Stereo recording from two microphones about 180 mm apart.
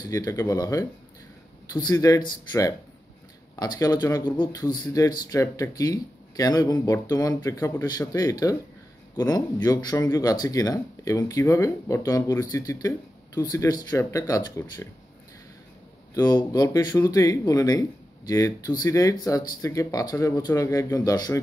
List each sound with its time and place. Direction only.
0.0 s speech: 20° left (ahead or behind)
16.2 s speech: 25° left (ahead or behind)